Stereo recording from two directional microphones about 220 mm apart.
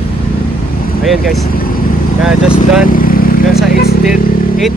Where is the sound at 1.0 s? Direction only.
Centre (ahead or behind).